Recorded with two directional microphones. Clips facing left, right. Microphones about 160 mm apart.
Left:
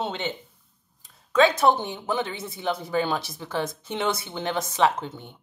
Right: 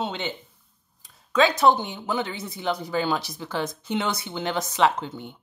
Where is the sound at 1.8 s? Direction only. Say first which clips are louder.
Even; 30° left (ahead or behind).